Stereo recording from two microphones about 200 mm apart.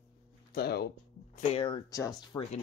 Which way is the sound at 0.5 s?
50° left (ahead or behind).